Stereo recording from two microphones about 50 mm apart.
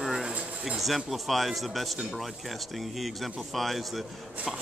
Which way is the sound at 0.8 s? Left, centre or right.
Centre.